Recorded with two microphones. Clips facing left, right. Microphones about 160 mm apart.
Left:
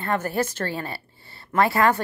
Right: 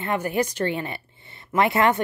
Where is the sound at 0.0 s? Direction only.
15° right (ahead or behind).